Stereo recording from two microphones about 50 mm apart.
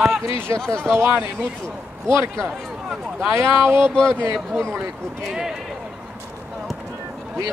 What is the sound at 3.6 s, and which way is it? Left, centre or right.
Speech, centre.